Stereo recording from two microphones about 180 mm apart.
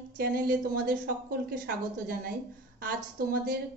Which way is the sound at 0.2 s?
55° right (ahead or behind).